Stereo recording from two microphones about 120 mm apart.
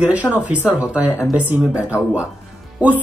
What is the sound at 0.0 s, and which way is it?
Speech, 10° right (ahead or behind).